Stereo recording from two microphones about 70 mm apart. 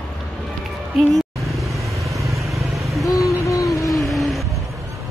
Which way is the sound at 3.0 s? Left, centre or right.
Left.